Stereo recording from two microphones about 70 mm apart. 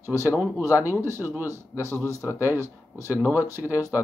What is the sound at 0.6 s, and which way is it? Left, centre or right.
A man's voice, right.